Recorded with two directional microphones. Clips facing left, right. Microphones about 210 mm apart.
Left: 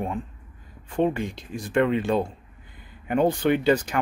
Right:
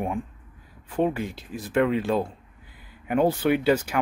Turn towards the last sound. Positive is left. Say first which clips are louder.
# left 1 dB
turn(degrees=-5)  # may be behind; listen again after turning